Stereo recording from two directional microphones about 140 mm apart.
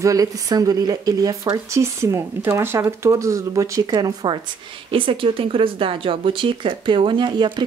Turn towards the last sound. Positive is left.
turn(degrees=-35)  # may be behind; listen again after turning